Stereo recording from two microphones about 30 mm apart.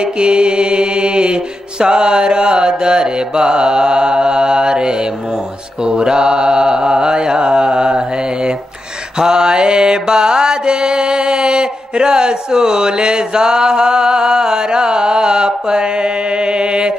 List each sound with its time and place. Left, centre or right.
0.0 s mantra: right
9.2 s mantra: right